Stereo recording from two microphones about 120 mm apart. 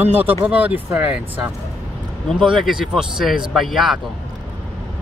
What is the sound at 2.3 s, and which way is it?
Speech, centre (ahead or behind).